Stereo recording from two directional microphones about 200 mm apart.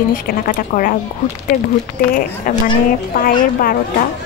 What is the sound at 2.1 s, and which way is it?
Speech, 45° left (ahead or behind).